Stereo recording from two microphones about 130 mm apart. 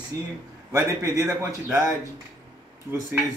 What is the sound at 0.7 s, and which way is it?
Speech, 25° right (ahead or behind).